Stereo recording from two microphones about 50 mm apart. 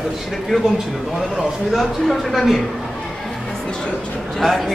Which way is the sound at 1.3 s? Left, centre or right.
Centre.